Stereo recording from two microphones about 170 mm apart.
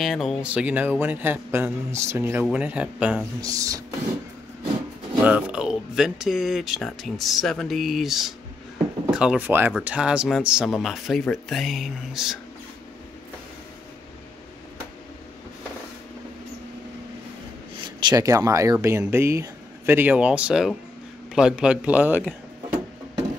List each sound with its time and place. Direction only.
0.0 s speech: centre (ahead or behind)
3.3 s speech: 20° right (ahead or behind)
5.2 s speech: 5° right (ahead or behind)
18.0 s speech: 20° right (ahead or behind)